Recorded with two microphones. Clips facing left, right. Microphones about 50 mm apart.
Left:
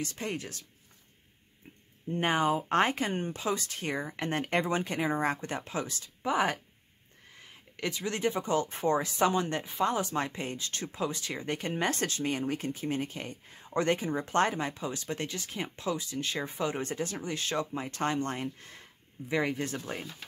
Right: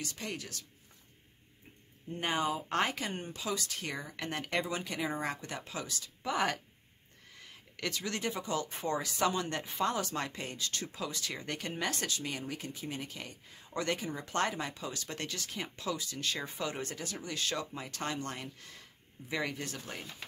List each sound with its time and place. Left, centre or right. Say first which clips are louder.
0.0 s speech: left 5 dB; left
2.1 s speech: left 5 dB; left
6.3 s speech: left 3 dB; centre